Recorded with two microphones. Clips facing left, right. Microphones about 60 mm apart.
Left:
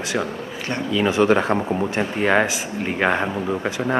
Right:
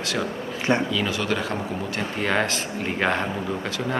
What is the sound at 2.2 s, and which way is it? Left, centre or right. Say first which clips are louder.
Speech: left 5 dB; centre.